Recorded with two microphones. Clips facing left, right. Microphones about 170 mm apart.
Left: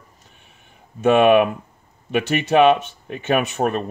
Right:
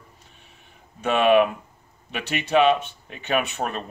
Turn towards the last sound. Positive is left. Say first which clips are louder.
# left 5 dB
turn(degrees=45)  # may be behind; listen again after turning